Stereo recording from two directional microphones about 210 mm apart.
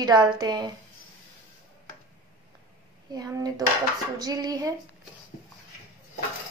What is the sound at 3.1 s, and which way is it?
A woman's voice, 15° right (ahead or behind).